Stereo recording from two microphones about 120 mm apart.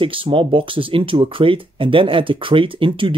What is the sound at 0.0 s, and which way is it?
Speech, 45° right (ahead or behind).